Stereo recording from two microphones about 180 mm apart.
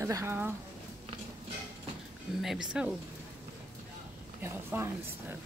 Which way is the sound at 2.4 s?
5° right (ahead or behind).